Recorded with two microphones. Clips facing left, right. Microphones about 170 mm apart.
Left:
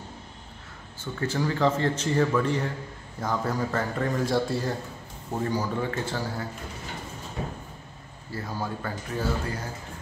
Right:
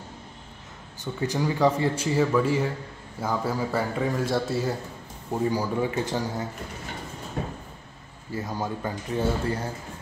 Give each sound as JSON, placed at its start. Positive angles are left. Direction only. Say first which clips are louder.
{"t": 1.0, "sound": "a man's voice", "louder": "right 1 dB", "side_deg": -15}
{"t": 8.3, "sound": "speech", "louder": "right 2 dB", "side_deg": -20}